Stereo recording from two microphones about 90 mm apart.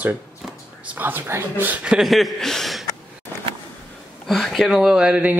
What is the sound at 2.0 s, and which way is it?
Speech, centre (ahead or behind).